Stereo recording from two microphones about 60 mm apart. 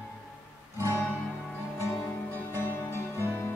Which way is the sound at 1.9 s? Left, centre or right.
Left.